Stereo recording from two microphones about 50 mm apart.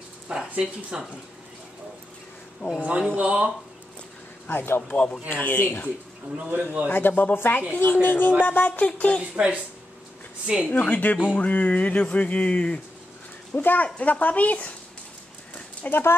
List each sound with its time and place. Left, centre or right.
0.3 s speech: centre
2.8 s speech: right
4.5 s speech: left
4.9 s speech: left
5.3 s speech: left
6.3 s speech: right
6.9 s speech: left
9.2 s speech: right
10.7 s speech: left
13.6 s speech: left
13.9 s speech: left
15.9 s speech: left